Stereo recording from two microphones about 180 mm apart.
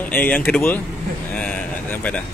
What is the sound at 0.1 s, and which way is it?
Speech, 10° left (ahead or behind).